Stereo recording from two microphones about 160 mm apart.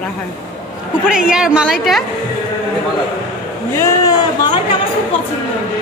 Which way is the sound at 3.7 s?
15° left (ahead or behind).